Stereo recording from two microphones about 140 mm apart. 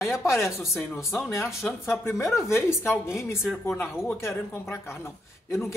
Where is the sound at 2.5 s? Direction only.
20° left (ahead or behind).